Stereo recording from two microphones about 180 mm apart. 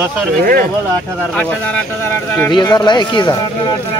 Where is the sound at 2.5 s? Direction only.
25° left (ahead or behind).